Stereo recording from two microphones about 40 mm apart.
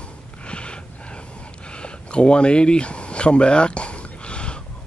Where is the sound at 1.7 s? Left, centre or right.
Left.